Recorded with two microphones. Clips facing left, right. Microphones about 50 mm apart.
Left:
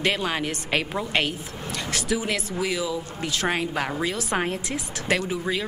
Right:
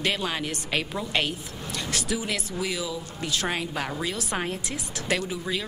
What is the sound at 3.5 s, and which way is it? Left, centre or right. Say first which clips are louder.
Speech: left 4 dB; left.